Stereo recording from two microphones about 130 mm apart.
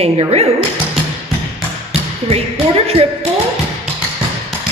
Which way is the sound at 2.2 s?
50° right (ahead or behind).